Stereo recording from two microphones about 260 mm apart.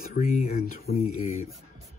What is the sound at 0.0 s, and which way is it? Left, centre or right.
Speech, left.